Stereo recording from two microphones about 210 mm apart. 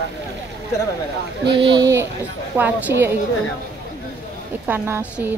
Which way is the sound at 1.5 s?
25° right (ahead or behind).